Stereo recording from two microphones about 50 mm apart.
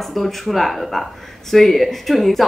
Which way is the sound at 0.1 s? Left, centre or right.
Centre.